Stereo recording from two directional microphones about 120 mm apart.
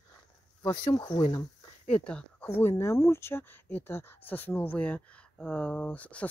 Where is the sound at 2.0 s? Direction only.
10° left (ahead or behind).